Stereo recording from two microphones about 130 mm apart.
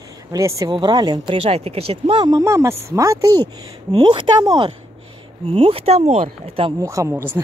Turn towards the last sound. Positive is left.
turn(degrees=-20)  # may be behind; listen again after turning